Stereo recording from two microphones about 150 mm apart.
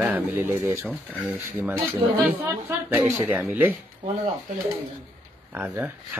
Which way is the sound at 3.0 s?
15° right (ahead or behind).